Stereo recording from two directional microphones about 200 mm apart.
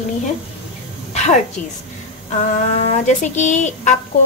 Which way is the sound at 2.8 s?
35° left (ahead or behind).